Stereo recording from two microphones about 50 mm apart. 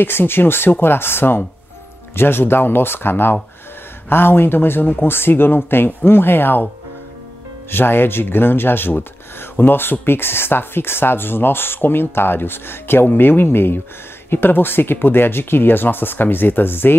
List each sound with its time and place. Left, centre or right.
0.0 s speech: left
7.7 s speech: left